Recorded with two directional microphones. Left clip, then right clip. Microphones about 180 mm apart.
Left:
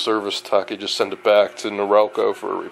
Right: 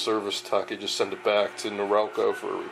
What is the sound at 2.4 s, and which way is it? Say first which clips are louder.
Speech: left 6 dB; 35° left (ahead or behind).